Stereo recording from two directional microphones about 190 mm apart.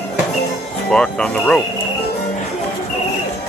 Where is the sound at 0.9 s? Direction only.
5° left (ahead or behind).